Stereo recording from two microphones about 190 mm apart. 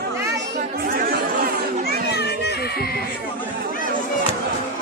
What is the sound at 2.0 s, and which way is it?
Music, 60° left (ahead or behind).